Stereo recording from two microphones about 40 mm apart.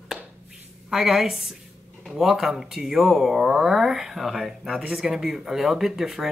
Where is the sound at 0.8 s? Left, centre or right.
Centre.